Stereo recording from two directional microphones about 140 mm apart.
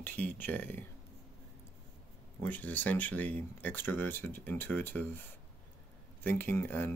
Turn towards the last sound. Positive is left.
turn(degrees=15)  # may be behind; listen again after turning